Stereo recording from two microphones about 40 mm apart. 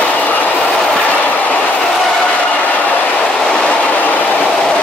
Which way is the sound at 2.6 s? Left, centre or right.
Left.